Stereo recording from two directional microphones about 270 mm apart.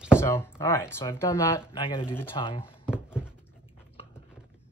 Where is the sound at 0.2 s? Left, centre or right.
Centre.